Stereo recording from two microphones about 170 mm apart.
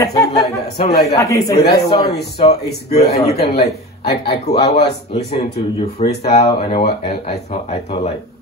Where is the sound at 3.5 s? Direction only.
35° left (ahead or behind).